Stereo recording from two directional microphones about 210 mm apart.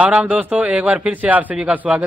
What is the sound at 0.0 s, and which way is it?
A man's voice, 5° right (ahead or behind).